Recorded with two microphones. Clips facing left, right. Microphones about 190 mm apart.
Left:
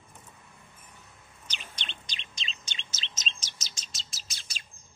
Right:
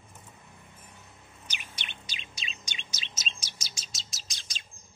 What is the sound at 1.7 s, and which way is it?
Chirp, 10° right (ahead or behind).